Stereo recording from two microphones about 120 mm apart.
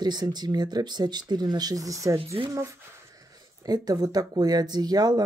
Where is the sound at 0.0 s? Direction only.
35° right (ahead or behind).